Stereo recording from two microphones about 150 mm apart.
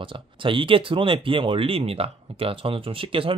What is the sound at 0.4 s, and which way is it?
Speech, 35° right (ahead or behind).